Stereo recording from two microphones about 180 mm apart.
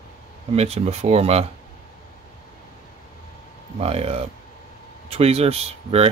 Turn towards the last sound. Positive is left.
turn(degrees=-35)  # may be behind; listen again after turning